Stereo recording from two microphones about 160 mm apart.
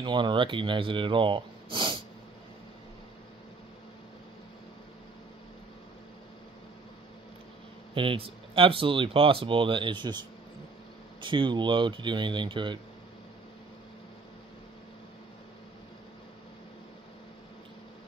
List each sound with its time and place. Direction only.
0.0 s speech: 30° right (ahead or behind)
7.9 s speech: 35° right (ahead or behind)